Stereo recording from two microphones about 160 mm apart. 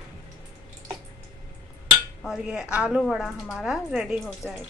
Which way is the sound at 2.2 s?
5° right (ahead or behind).